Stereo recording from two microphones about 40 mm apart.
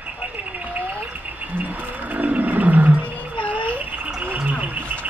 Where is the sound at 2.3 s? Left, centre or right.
Right.